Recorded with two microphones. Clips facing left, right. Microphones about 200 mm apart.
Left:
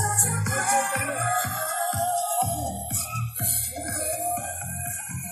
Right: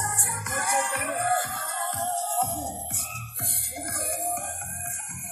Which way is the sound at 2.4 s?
65° left (ahead or behind).